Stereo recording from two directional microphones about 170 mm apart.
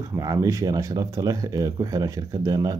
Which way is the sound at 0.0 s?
20° right (ahead or behind).